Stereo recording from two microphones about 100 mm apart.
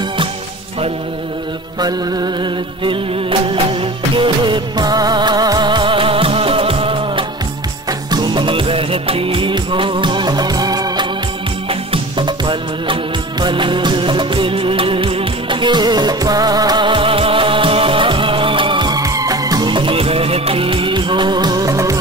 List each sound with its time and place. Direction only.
1.8 s music: 45° right (ahead or behind); by 7.2 s 60° right (ahead or behind)
8.1 s music of bollywood: 45° right (ahead or behind)
11.7 s music: 60° right (ahead or behind); by 19.7 s 40° right (ahead or behind)
19.7 s music: 60° right (ahead or behind); by 21.9 s 35° right (ahead or behind)